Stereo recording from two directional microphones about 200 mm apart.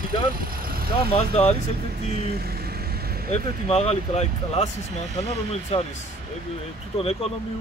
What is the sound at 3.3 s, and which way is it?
Speech, 30° left (ahead or behind).